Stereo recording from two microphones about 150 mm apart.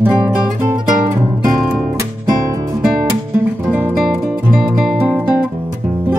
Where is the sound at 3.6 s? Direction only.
10° right (ahead or behind).